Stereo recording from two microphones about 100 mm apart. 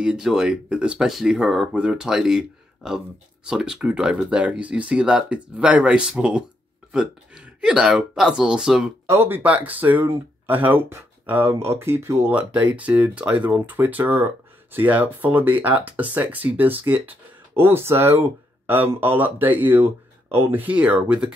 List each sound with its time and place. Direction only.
0.0 s speech: 5° right (ahead or behind)
9.1 s speech: 20° right (ahead or behind)
12.3 s speech: 15° right (ahead or behind)